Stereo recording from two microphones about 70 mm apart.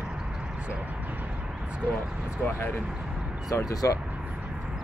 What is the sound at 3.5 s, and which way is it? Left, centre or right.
Speech, left.